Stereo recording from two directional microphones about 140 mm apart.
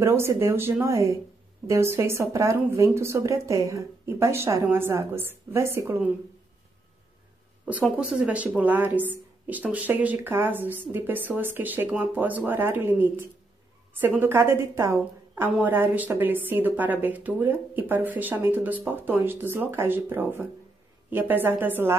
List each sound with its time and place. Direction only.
0.0 s speech: 20° right (ahead or behind)
7.8 s a woman's voice: 5° right (ahead or behind)